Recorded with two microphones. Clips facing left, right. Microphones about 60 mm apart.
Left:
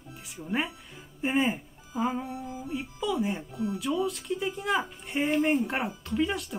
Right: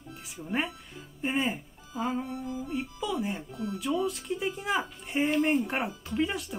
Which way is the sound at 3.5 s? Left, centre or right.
Centre.